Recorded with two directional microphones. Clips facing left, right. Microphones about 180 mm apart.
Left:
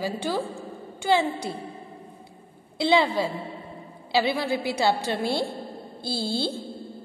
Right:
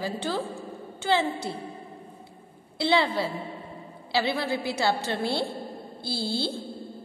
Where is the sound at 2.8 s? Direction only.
15° left (ahead or behind).